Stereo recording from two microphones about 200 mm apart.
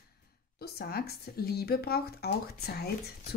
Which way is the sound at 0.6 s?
50° left (ahead or behind).